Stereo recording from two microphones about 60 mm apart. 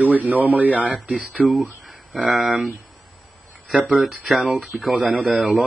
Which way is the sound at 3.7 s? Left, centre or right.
Centre.